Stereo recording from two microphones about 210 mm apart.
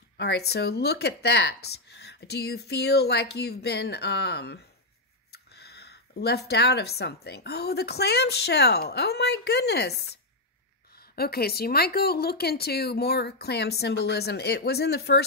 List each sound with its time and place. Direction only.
0.2 s speech: 50° left (ahead or behind)